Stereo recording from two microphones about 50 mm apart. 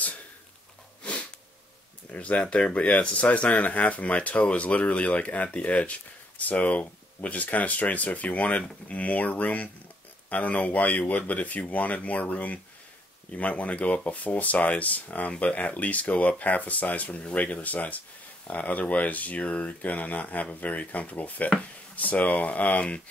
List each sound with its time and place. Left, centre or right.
2.1 s speech: left